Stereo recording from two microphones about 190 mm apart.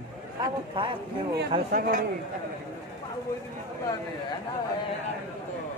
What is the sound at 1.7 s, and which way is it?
Speech, 45° right (ahead or behind).